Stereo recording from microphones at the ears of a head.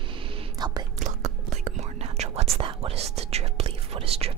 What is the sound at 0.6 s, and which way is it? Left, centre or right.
Whispering, right.